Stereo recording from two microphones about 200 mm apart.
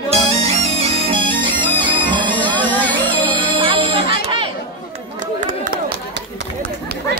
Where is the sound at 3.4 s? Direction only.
25° right (ahead or behind).